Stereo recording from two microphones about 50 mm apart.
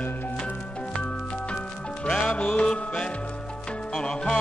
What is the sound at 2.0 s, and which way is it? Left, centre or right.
Music, centre.